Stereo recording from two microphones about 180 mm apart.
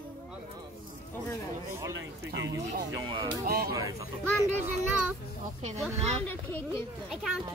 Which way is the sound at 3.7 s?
20° right (ahead or behind).